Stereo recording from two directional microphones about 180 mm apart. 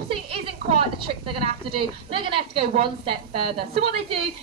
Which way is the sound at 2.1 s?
30° right (ahead or behind).